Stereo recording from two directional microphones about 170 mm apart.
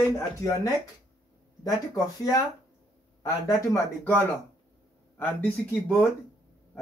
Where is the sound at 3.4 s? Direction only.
20° left (ahead or behind).